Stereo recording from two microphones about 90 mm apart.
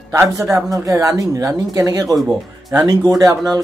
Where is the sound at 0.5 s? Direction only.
35° right (ahead or behind).